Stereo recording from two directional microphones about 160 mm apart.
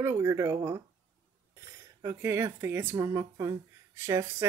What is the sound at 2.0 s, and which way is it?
Speech, 15° right (ahead or behind).